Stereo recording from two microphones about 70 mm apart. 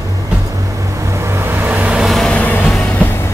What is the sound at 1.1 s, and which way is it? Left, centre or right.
Vehicle, right.